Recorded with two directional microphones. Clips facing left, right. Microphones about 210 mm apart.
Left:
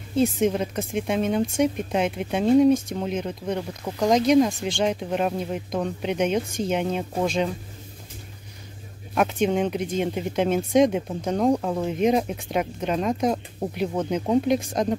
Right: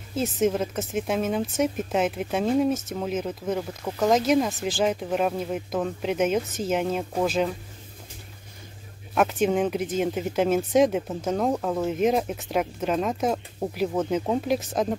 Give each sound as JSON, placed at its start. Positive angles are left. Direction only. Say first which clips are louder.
{"t": 0.1, "sound": "speech", "louder": "left 3 dB", "side_deg": -5}
{"t": 9.1, "sound": "speech", "louder": "even", "side_deg": -5}